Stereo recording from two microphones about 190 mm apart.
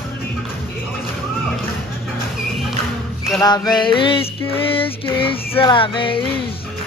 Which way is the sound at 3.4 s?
20° left (ahead or behind).